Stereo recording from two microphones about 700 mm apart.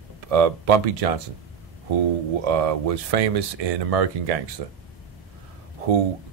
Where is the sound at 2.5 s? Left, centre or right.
Right.